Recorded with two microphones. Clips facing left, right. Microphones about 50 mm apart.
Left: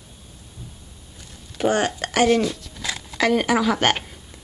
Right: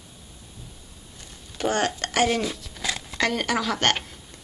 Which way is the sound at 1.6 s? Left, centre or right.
Centre.